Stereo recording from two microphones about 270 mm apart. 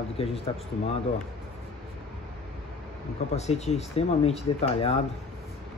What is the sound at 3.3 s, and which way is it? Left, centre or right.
Speech, left.